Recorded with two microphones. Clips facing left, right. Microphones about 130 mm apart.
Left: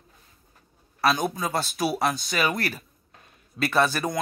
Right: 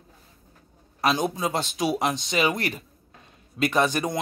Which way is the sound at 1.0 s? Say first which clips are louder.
Even; 20° right (ahead or behind).